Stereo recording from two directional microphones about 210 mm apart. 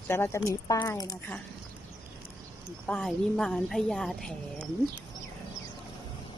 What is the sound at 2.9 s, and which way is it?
A woman's voice, centre (ahead or behind).